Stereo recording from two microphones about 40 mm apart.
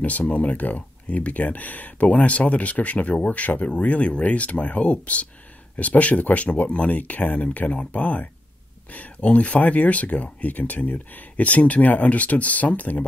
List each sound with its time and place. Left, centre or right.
0.0 s speech: left